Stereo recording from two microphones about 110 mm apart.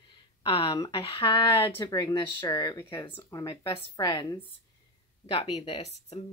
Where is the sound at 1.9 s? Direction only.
30° left (ahead or behind).